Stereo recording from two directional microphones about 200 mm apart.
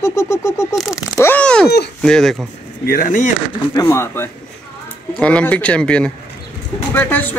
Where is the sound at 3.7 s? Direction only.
15° left (ahead or behind).